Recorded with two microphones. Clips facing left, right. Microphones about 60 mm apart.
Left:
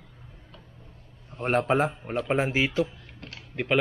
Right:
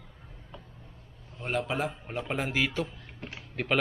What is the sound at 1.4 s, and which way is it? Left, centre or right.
Speech, left.